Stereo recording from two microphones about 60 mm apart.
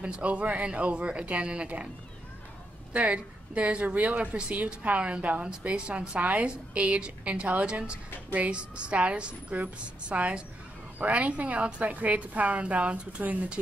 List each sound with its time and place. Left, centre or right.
0.0 s a woman's voice: centre
2.9 s a woman's voice: right